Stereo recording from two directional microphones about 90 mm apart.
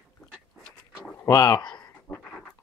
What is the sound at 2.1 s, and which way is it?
Dog, 15° left (ahead or behind).